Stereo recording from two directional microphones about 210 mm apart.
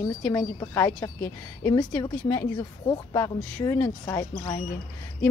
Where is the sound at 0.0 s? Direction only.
15° left (ahead or behind).